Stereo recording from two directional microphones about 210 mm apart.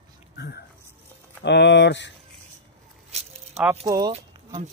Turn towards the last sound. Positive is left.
turn(degrees=-20)  # may be behind; listen again after turning